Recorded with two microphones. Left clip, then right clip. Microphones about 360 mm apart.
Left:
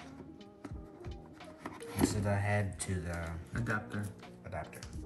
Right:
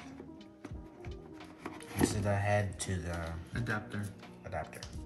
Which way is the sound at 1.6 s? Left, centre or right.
Centre.